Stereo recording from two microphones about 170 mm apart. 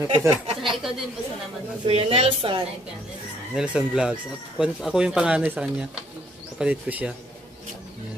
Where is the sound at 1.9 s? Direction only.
35° right (ahead or behind).